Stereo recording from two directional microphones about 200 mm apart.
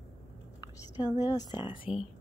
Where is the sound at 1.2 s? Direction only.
20° left (ahead or behind).